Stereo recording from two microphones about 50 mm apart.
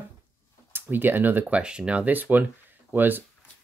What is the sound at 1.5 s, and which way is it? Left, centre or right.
Speech, right.